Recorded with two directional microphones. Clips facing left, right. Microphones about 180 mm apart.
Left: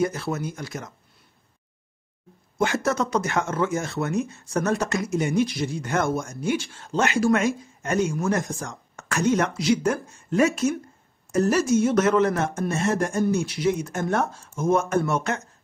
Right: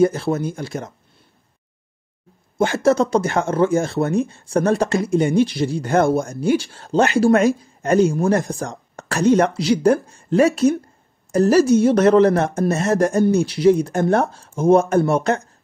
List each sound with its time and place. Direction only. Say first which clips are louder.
0.0 s speech: right 8 dB; 30° right (ahead or behind)
2.5 s speech: right 7 dB; 30° right (ahead or behind)